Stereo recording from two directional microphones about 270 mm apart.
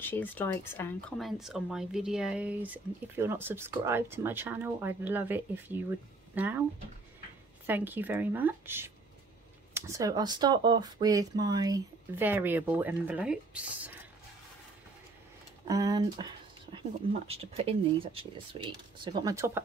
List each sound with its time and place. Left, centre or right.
0.0 s speech: centre
7.6 s speech: centre
15.6 s speech: centre